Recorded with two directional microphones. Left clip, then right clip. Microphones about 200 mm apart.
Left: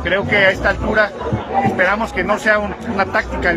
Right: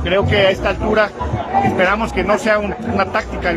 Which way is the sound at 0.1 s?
10° right (ahead or behind).